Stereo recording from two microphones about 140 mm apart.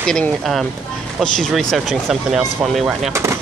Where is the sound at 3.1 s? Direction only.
20° right (ahead or behind).